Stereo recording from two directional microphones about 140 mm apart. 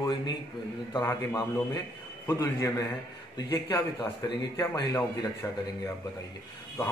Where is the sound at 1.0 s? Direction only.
20° left (ahead or behind).